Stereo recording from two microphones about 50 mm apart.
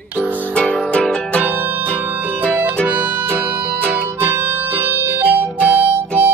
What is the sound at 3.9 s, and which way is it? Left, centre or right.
Music, left.